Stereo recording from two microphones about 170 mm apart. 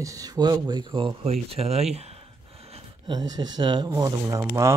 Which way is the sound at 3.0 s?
25° right (ahead or behind).